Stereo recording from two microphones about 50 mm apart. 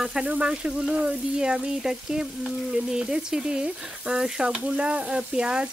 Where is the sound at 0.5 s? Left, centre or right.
Centre.